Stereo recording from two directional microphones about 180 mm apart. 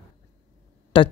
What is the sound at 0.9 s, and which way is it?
Speech, 25° left (ahead or behind).